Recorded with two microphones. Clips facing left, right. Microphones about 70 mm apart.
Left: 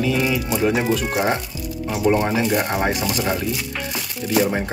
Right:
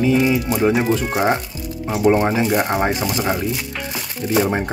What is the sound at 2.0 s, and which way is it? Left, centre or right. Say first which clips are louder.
Speech: right 3 dB; right.